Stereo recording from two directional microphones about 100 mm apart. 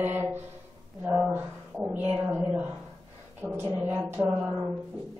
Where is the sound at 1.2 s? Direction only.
15° right (ahead or behind).